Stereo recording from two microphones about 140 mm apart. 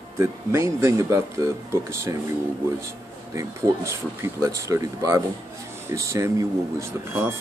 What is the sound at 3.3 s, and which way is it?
Speech, 20° right (ahead or behind).